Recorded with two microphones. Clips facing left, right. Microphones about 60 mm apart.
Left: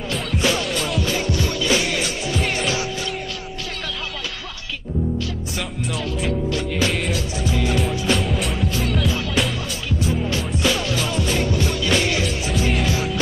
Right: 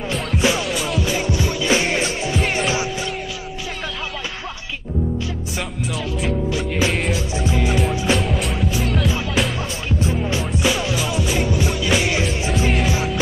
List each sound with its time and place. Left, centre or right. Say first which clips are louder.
0.4 s music: right 2 dB; centre
0.7 s music: right 1 dB; centre
1.1 s music: right 1 dB; centre
6.5 s music: right 1 dB; centre
8.1 s music: right 1 dB; centre
10.6 s music: even; centre
12.2 s music: right 2 dB; right